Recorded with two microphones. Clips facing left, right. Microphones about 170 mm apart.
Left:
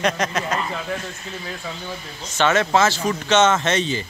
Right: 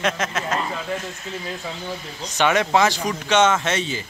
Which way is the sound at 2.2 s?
15° right (ahead or behind).